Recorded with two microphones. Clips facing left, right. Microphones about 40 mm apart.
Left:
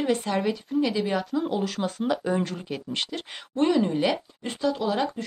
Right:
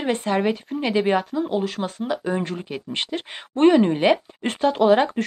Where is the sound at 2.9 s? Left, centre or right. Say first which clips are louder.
Right 6 dB; right.